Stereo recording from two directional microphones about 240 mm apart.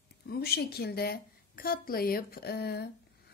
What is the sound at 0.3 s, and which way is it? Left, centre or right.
A woman's voice, left.